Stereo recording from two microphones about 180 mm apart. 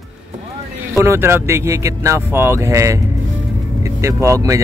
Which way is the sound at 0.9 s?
15° right (ahead or behind).